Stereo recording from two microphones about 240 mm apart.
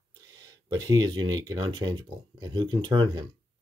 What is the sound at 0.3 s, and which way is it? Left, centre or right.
Speech, centre.